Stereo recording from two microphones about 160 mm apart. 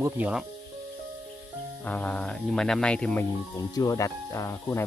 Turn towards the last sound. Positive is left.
turn(degrees=15)  # may be behind; listen again after turning